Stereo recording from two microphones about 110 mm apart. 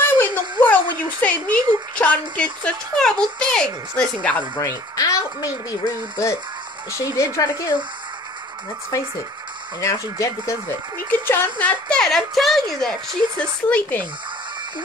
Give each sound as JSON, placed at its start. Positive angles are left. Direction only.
{"t": 0.0, "sound": "speech", "side_deg": 15}
{"t": 4.6, "sound": "speech", "side_deg": 30}
{"t": 9.8, "sound": "speech", "side_deg": 30}
{"t": 11.1, "sound": "speech", "side_deg": 20}
{"t": 11.6, "sound": "a woman's voice", "side_deg": 10}
{"t": 13.4, "sound": "speech", "side_deg": 15}